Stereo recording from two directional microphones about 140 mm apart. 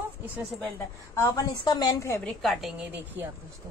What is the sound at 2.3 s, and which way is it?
Speech, centre (ahead or behind).